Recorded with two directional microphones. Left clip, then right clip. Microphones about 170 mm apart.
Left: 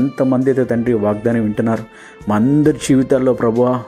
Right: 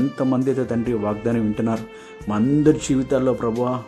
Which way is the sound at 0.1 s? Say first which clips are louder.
Left 6 dB; 20° left (ahead or behind).